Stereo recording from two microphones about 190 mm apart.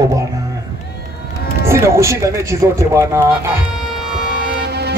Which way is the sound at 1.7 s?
15° right (ahead or behind).